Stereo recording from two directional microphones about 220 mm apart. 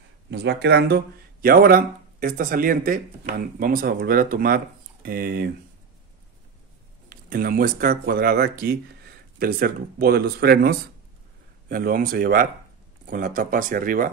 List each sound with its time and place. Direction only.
0.3 s speech: 50° right (ahead or behind)
7.1 s speech: 40° right (ahead or behind)